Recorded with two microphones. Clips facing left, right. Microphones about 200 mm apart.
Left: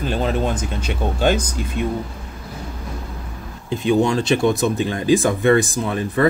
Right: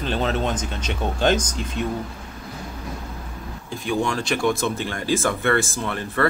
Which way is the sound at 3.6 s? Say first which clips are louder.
Left 7 dB; 20° left (ahead or behind).